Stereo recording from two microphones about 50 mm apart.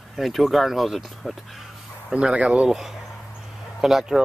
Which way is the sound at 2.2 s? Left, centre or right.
Centre.